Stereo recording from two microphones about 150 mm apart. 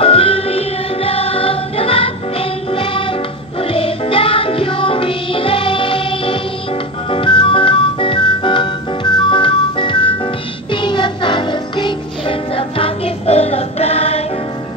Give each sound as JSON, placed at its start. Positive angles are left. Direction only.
{"t": 0.0, "sound": "music", "side_deg": 40}